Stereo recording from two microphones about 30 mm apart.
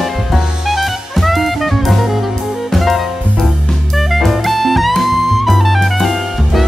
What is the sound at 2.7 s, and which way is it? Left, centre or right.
Music, centre.